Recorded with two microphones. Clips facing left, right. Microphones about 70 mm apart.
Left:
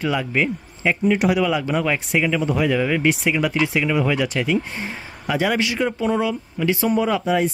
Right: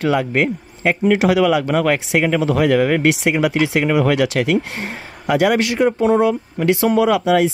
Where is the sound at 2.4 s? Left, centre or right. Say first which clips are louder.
Right 5 dB; right.